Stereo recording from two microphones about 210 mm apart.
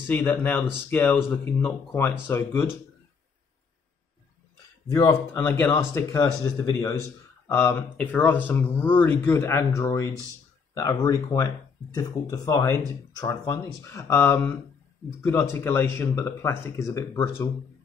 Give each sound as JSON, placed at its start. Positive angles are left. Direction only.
{"t": 0.0, "sound": "speech", "side_deg": 10}
{"t": 4.9, "sound": "speech", "side_deg": 15}
{"t": 7.4, "sound": "speech", "side_deg": 10}